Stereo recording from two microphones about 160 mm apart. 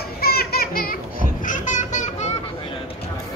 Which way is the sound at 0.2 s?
75° left (ahead or behind).